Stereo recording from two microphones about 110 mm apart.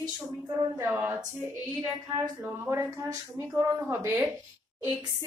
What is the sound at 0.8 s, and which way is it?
Speech, 20° right (ahead or behind).